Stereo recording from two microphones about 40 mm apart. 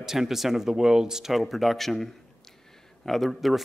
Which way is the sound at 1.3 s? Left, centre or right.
Centre.